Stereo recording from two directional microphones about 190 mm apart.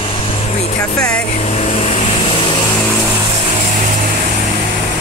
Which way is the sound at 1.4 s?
35° left (ahead or behind).